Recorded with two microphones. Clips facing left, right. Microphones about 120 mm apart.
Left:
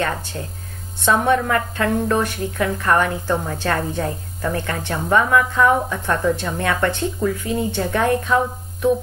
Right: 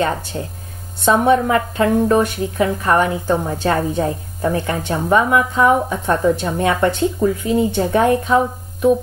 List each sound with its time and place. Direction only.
0.0 s a woman's voice: 20° right (ahead or behind)